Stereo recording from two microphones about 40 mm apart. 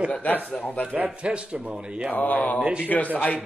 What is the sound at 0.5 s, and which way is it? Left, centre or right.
Speech, left.